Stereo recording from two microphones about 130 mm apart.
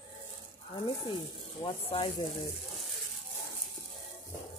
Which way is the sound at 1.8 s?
45° left (ahead or behind).